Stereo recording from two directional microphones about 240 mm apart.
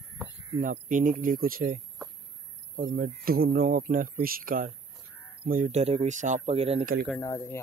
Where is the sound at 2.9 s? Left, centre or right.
Right.